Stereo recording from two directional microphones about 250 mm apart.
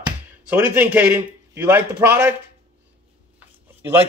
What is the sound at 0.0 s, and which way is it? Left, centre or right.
Speech, centre.